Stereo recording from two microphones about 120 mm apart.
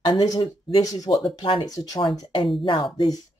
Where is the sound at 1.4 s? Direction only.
45° left (ahead or behind).